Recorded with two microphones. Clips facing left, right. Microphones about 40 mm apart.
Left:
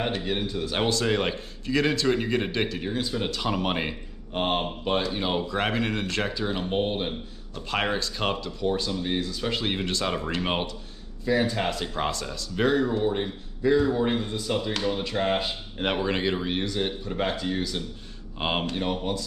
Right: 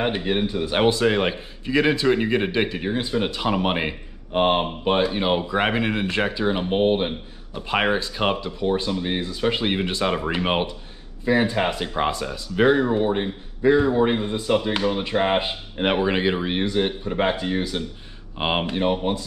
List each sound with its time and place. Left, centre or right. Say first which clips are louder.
0.0 s a man's voice: right 5 dB; right